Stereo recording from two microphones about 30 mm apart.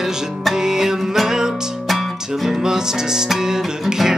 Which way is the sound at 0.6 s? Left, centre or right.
Centre.